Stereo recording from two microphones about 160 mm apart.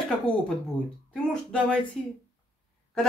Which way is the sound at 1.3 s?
5° left (ahead or behind).